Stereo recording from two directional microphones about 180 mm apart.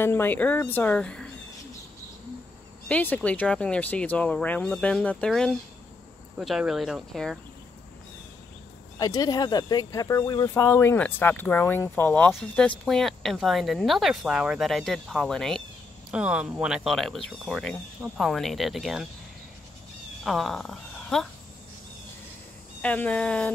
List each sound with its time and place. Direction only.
0.0 s speech: 10° left (ahead or behind)
2.9 s speech: 10° left (ahead or behind)
8.9 s speech: 20° left (ahead or behind); by 19.0 s centre (ahead or behind)
20.2 s speech: centre (ahead or behind)
22.8 s speech: 5° left (ahead or behind)